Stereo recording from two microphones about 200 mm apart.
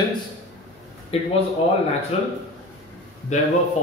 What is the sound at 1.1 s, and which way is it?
Speech, 30° left (ahead or behind).